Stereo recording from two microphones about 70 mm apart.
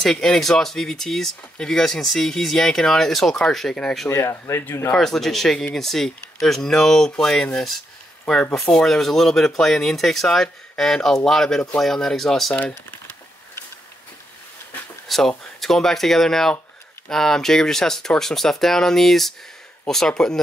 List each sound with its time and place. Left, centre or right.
0.0 s speech: centre
4.1 s speech: left
4.9 s speech: centre
15.0 s speech: centre